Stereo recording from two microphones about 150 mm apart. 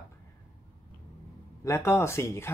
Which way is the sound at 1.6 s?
20° left (ahead or behind).